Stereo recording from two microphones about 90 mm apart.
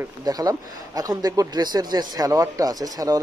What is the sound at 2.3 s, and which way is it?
Speech, 40° right (ahead or behind).